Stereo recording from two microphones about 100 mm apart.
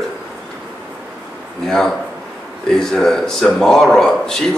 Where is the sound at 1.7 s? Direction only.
5° left (ahead or behind).